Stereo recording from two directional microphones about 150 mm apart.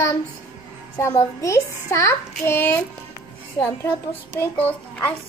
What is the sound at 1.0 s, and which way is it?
A child's voice, 20° left (ahead or behind).